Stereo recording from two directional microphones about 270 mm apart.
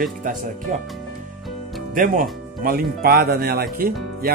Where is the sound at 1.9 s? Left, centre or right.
Right.